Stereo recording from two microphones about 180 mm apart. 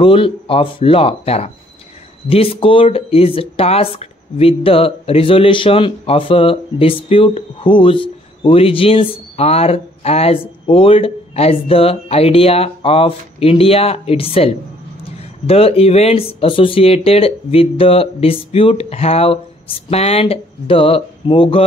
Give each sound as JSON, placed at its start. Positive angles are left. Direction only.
{"t": 0.0, "sound": "speech", "side_deg": 30}